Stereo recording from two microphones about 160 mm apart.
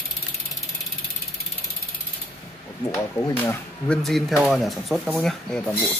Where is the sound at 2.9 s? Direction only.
20° left (ahead or behind).